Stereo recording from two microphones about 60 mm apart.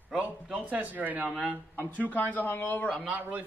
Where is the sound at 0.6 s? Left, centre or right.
Right.